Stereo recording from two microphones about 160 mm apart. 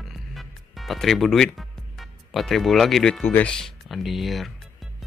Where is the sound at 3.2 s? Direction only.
10° left (ahead or behind).